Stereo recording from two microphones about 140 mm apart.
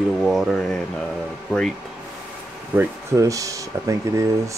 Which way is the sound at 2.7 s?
20° right (ahead or behind).